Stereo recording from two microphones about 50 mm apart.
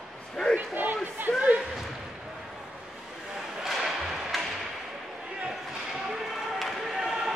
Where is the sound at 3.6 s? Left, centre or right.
Centre.